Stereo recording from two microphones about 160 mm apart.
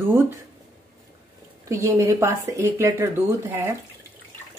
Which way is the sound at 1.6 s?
20° right (ahead or behind).